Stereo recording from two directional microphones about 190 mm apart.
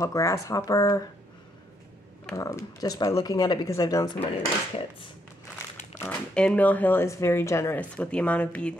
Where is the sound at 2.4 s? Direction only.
15° left (ahead or behind).